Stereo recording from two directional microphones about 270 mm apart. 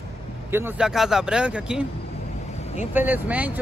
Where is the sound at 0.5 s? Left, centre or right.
Centre.